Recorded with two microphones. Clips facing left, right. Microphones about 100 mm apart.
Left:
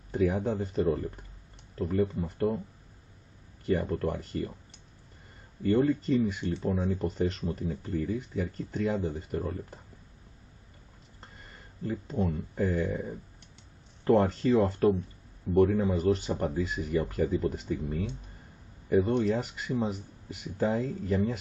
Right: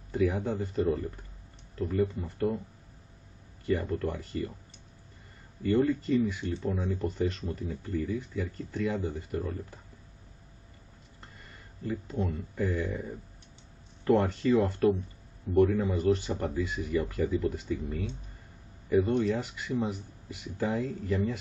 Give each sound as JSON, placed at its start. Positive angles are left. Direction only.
{"t": 0.1, "sound": "speech", "side_deg": 45}
{"t": 3.6, "sound": "speech", "side_deg": 40}
{"t": 5.6, "sound": "speech", "side_deg": 45}
{"t": 6.3, "sound": "speech", "side_deg": 55}
{"t": 11.8, "sound": "speech", "side_deg": 40}